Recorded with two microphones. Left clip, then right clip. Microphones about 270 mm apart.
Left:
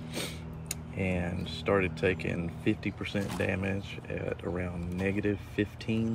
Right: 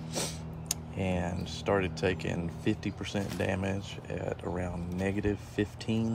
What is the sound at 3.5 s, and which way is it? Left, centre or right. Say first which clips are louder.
Speech: even; right.